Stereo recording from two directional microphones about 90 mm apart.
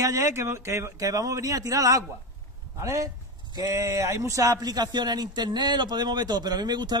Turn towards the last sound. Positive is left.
turn(degrees=-50)  # may be behind; listen again after turning